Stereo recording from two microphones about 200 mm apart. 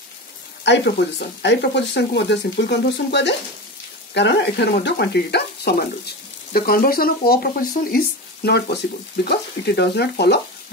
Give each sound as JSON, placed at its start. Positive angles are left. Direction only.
{"t": 0.7, "sound": "speech", "side_deg": 60}